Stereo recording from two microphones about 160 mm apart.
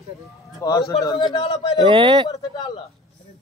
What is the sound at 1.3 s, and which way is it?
Speech, 35° left (ahead or behind).